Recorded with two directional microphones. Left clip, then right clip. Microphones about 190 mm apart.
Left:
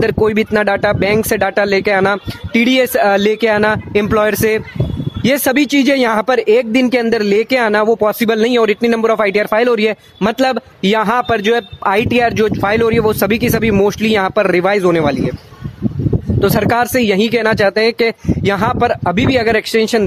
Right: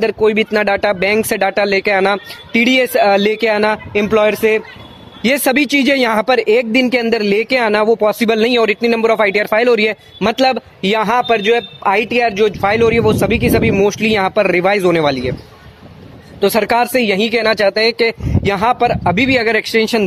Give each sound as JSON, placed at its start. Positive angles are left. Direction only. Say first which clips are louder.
{"t": 0.0, "sound": "speech", "louder": "even", "side_deg": 25}
{"t": 0.5, "sound": "speech", "louder": "left 1 dB", "side_deg": 15}
{"t": 5.5, "sound": "speech", "louder": "even", "side_deg": 15}
{"t": 16.3, "sound": "speech", "louder": "right 1 dB", "side_deg": 20}